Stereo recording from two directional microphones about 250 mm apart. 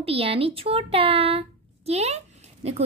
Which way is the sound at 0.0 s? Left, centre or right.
Right.